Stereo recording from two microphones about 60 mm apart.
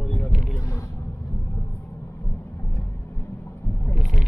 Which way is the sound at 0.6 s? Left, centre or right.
Left.